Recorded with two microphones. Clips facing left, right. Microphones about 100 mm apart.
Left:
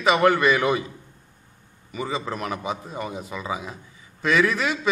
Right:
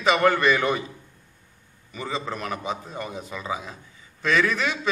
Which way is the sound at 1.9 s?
5° left (ahead or behind).